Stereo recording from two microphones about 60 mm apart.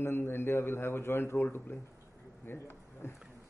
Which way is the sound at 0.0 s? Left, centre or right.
Left.